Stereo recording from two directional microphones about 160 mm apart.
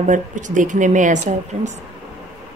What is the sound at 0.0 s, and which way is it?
A woman's voice, 50° right (ahead or behind).